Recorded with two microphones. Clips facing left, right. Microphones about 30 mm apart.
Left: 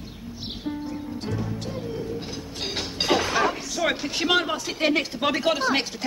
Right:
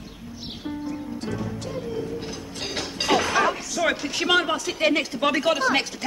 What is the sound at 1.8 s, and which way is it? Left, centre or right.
Music, centre.